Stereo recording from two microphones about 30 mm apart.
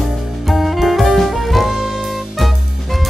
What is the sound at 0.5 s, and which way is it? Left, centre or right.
Music, centre.